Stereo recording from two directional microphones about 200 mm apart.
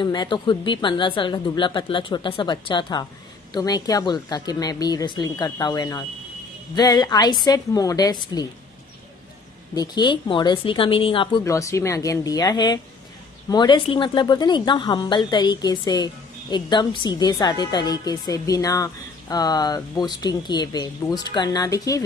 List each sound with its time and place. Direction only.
0.0 s speech: 20° left (ahead or behind)
9.8 s speech: 20° left (ahead or behind)
11.4 s speech: 15° left (ahead or behind)